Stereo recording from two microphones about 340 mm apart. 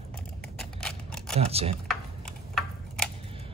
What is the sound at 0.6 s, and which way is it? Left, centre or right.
Scissors, centre.